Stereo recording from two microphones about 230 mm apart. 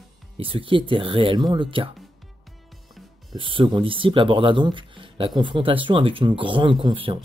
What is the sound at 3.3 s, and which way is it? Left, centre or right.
Speech, right.